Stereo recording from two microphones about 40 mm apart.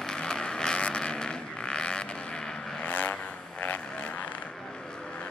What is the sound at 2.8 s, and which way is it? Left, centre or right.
Vehicle, left.